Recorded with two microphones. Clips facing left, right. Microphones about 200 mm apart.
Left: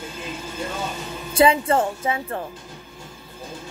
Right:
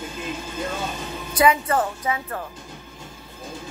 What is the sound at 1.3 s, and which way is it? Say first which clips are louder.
A woman's voice: left 2 dB; 30° left (ahead or behind).